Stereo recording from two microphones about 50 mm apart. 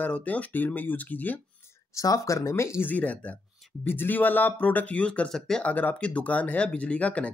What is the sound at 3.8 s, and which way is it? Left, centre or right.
Speech, left.